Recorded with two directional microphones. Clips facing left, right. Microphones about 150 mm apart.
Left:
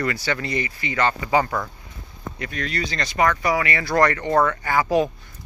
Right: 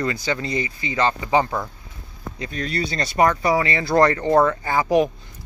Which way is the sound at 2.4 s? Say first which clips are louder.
Right 2 dB; 30° right (ahead or behind).